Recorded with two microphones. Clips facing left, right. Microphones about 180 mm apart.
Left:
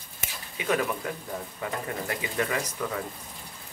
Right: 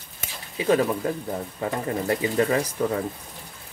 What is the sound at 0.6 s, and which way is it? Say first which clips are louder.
Speech: right 6 dB; 30° right (ahead or behind).